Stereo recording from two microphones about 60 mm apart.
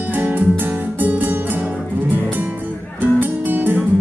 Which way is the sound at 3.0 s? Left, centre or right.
Right.